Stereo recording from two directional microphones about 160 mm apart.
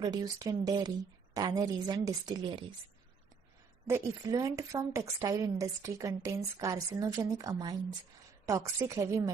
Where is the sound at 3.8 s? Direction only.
20° right (ahead or behind).